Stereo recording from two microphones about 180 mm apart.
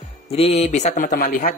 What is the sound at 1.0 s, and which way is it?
Speech, 55° left (ahead or behind).